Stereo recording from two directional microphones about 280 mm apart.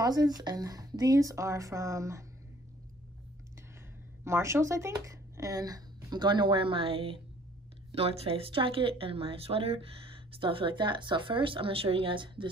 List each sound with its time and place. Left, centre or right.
0.0 s speech: centre
4.2 s speech: centre